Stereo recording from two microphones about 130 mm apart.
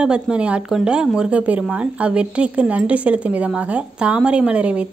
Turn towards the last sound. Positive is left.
turn(degrees=-10)  # may be behind; listen again after turning